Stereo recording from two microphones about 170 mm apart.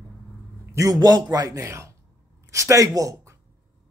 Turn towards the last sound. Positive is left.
turn(degrees=-20)  # may be behind; listen again after turning